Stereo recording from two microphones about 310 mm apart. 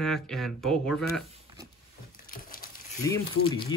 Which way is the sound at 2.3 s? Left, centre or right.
Left.